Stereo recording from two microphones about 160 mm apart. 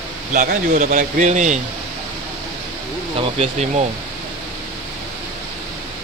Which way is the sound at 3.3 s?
35° right (ahead or behind).